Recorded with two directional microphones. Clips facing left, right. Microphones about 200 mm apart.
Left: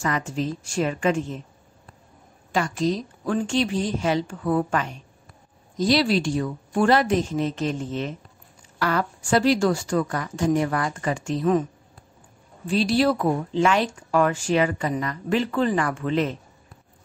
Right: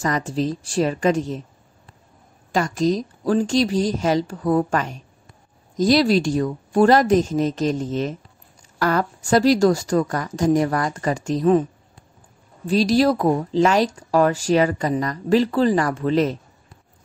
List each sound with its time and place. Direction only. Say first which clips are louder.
0.0 s speech: right 4 dB; 35° right (ahead or behind)
2.5 s speech: right 4 dB; 40° right (ahead or behind)
12.6 s speech: right 3 dB; 40° right (ahead or behind)